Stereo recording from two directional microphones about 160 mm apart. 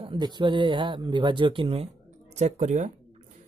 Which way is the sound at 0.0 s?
30° right (ahead or behind).